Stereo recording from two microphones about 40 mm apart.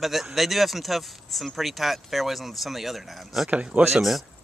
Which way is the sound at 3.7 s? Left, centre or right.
Right.